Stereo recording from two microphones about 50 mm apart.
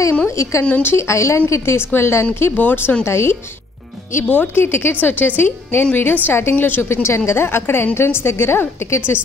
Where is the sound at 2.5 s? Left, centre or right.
Left.